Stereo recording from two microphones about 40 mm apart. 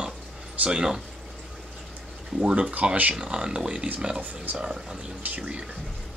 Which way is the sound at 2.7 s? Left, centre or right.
Right.